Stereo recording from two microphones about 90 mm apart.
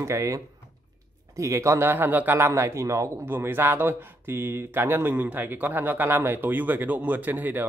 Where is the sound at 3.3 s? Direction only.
25° right (ahead or behind).